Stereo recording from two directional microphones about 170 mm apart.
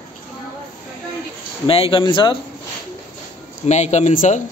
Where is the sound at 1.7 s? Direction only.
35° left (ahead or behind).